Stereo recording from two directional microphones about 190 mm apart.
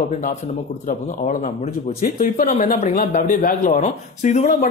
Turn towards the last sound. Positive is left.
turn(degrees=40)  # may be behind; listen again after turning